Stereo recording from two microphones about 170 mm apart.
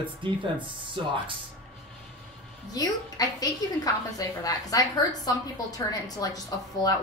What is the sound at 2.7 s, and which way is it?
A woman's voice, 20° left (ahead or behind).